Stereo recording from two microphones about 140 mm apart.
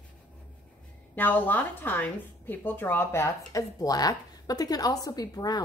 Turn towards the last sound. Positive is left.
turn(degrees=30)  # may be behind; listen again after turning